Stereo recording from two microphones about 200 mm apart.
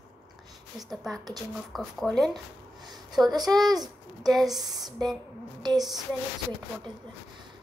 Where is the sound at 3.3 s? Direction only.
20° right (ahead or behind).